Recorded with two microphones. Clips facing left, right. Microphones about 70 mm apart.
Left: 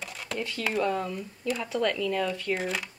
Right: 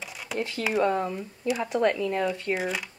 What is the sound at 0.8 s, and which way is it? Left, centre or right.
Speech, right.